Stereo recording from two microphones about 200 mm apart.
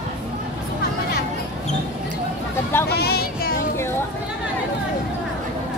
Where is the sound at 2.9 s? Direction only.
50° left (ahead or behind).